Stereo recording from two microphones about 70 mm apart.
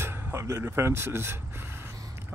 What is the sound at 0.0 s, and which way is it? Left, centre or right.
Speech, right.